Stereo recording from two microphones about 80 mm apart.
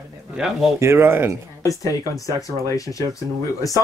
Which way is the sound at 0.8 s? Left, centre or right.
Right.